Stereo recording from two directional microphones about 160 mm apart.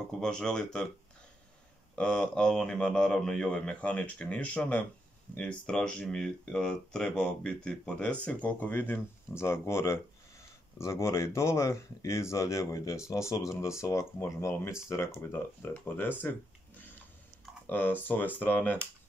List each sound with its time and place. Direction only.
0.2 s a man's voice: 5° left (ahead or behind)
2.0 s a man's voice: 5° left (ahead or behind)
17.6 s speech: 10° left (ahead or behind)